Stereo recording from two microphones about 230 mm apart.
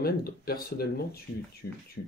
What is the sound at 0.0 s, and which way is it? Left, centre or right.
Speech, left.